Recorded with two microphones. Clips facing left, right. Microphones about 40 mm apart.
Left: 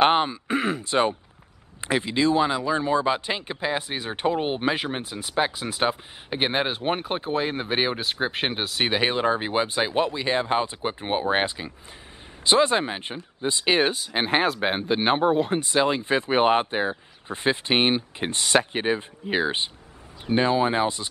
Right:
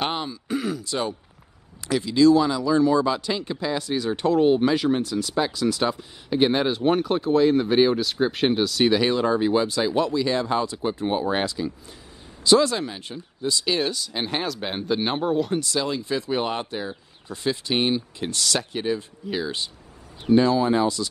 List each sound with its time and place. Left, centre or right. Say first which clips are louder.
0.0 s speech: left 8 dB; left